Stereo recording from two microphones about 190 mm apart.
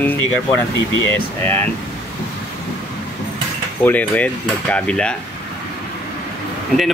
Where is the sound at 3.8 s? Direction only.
10° left (ahead or behind).